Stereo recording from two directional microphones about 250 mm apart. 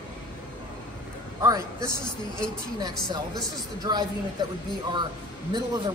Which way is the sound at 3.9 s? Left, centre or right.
Centre.